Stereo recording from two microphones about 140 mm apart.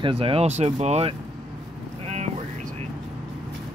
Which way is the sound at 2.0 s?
55° right (ahead or behind).